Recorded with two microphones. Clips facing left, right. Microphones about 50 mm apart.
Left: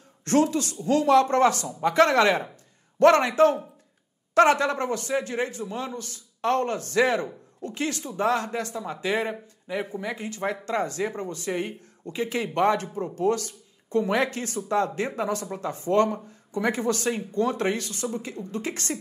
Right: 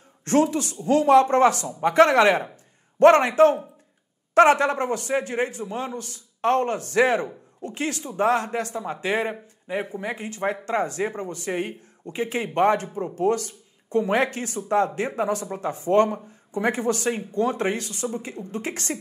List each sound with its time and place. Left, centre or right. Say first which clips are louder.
0.2 s a man's voice: right 1 dB; right
13.5 s a sound: right 2 dB; right
14.1 s speech: right 2 dB; right